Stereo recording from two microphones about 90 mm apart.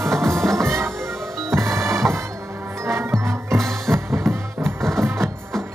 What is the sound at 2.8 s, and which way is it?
Music, 30° right (ahead or behind).